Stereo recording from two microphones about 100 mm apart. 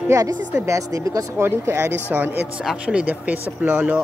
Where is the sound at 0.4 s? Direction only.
15° right (ahead or behind).